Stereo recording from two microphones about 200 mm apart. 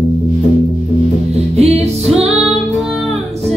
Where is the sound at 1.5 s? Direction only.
30° right (ahead or behind).